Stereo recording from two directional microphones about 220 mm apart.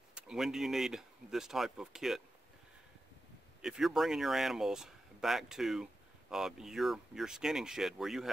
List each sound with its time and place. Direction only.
0.1 s speech: centre (ahead or behind)
3.6 s speech: centre (ahead or behind)